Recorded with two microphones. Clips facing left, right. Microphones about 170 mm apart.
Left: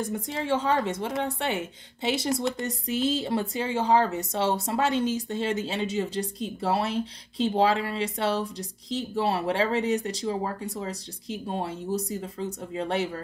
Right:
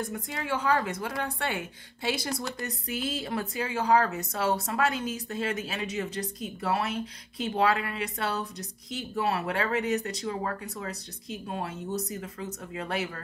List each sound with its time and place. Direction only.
0.1 s speech: 25° left (ahead or behind)